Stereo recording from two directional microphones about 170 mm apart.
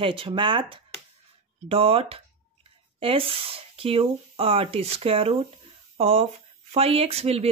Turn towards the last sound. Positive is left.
turn(degrees=-35)  # may be behind; listen again after turning